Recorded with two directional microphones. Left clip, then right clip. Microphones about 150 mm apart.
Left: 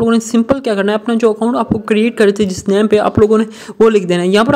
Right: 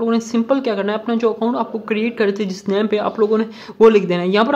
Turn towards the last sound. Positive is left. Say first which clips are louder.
# left 4 dB
turn(degrees=30)  # may be behind; listen again after turning